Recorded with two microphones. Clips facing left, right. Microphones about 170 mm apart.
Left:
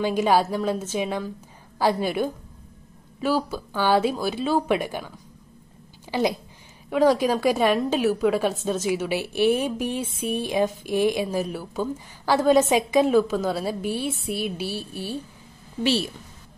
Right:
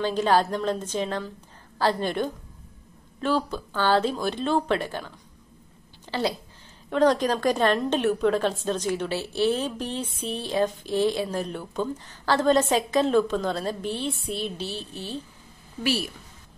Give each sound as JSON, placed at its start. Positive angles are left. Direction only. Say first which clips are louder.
{"t": 0.0, "sound": "a woman's voice", "louder": "left 2 dB", "side_deg": 10}
{"t": 15.8, "sound": "a woman's voice", "louder": "left 4 dB", "side_deg": 25}